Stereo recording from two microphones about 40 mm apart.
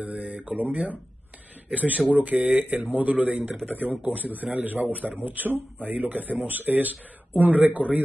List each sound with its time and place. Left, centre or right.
0.0 s speech: right